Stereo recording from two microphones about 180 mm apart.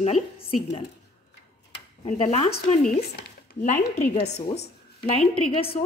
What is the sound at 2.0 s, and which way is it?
Speech, 35° left (ahead or behind).